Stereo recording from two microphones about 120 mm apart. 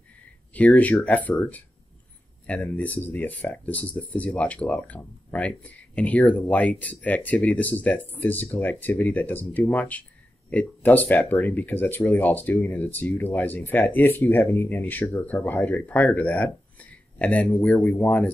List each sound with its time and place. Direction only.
0.5 s speech: 10° left (ahead or behind)